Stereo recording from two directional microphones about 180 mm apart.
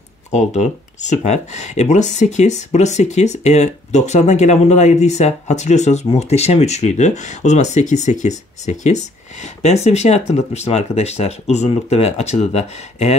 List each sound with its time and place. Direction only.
0.3 s speech: 40° left (ahead or behind)